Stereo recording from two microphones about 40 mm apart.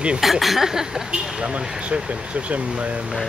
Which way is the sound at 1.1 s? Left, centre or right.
Right.